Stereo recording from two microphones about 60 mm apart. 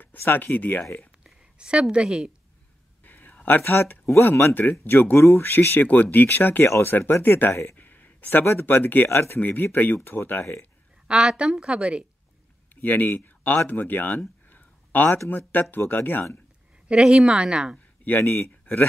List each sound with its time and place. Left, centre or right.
0.0 s speech: left
1.2 s a woman's voice: centre
3.0 s a sound: left
3.6 s speech: left
7.7 s a sound: left
8.5 s speech: left
9.4 s speech: left
11.1 s a woman's voice: centre
12.8 s speech: left
14.5 s a sound: left
15.2 s speech: left
16.8 s a woman's voice: centre
18.2 s speech: left